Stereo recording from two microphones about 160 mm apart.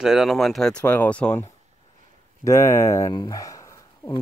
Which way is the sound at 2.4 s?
15° left (ahead or behind).